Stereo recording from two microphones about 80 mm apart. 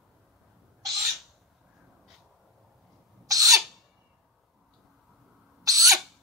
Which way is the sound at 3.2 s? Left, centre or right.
Right.